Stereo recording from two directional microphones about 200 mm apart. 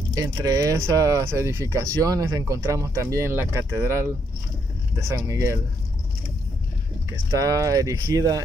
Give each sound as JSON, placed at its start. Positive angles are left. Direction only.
{"t": 0.1, "sound": "speech", "side_deg": -20}
{"t": 5.1, "sound": "speech", "side_deg": -15}
{"t": 7.3, "sound": "speech", "side_deg": -15}